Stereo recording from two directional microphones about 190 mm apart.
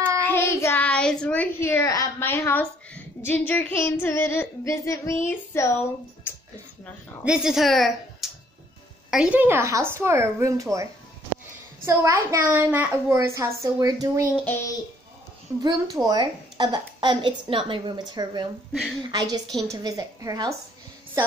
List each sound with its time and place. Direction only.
0.2 s a child's voice: 10° left (ahead or behind)
3.3 s female singing: 10° left (ahead or behind)
7.2 s a child's voice: centre (ahead or behind)
14.3 s female singing: 10° left (ahead or behind)
15.6 s a woman's voice: 20° right (ahead or behind)